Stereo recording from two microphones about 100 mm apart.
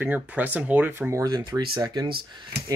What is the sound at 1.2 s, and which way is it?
Speech, 45° right (ahead or behind).